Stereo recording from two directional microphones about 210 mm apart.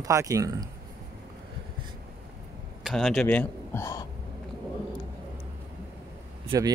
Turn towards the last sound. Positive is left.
turn(degrees=-20)  # may be behind; listen again after turning